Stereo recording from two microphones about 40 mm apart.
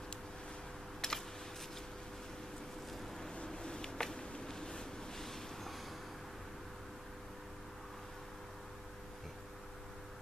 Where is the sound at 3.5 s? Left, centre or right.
Centre.